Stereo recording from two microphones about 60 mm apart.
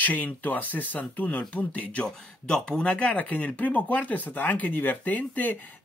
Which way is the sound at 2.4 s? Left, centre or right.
Centre.